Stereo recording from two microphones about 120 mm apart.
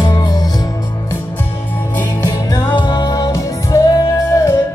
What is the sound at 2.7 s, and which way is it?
Music, 35° left (ahead or behind).